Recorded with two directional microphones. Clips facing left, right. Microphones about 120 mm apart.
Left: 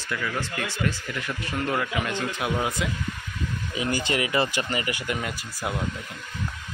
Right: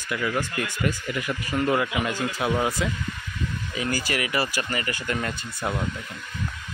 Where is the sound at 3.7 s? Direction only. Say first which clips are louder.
Left 2 dB; 20° left (ahead or behind); by 5.8 s 5° left (ahead or behind).